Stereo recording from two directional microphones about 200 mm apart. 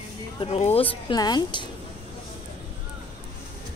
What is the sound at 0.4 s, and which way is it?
A woman's voice, 30° left (ahead or behind).